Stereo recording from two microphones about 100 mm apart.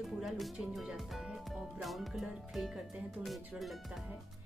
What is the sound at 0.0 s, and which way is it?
Speech, centre (ahead or behind).